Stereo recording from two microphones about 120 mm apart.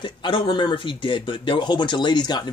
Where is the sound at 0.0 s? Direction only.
40° left (ahead or behind).